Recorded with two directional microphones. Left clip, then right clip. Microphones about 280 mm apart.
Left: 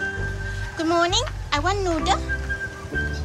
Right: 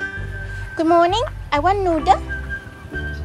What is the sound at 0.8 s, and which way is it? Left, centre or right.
Music, centre.